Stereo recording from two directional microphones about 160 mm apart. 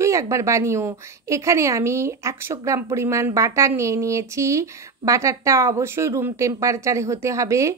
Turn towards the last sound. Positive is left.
turn(degrees=-20)  # may be behind; listen again after turning